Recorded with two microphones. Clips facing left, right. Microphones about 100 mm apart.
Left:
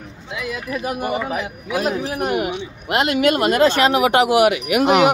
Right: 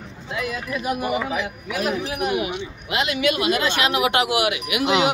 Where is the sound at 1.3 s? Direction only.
35° left (ahead or behind).